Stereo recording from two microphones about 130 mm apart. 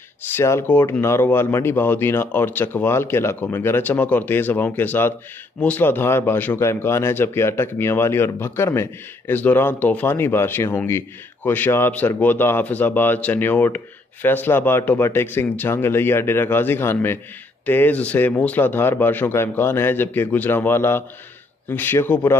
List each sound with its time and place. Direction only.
0.3 s speech: 20° left (ahead or behind)